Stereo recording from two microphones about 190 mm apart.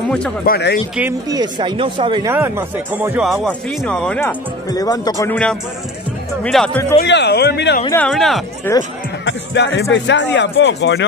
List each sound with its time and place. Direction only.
0.5 s speech: 60° left (ahead or behind)
1.3 s speech: 20° right (ahead or behind)
2.3 s speech: 10° right (ahead or behind); by 4.4 s 10° left (ahead or behind)
4.6 s speech: 20° left (ahead or behind)
5.3 s speech: 5° left (ahead or behind)
7.0 s speech: 65° left (ahead or behind)
7.9 s speech: 5° left (ahead or behind)
8.7 s speech: 10° left (ahead or behind)
9.2 s music: 65° left (ahead or behind)
9.9 s speech: 70° left (ahead or behind)